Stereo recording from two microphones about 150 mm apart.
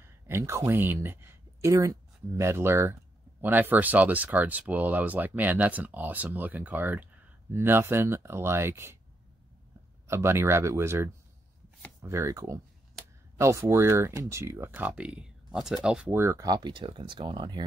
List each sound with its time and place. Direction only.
0.0 s speech: 15° right (ahead or behind)
10.0 s speech: 15° right (ahead or behind)
16.2 s speech: 20° right (ahead or behind)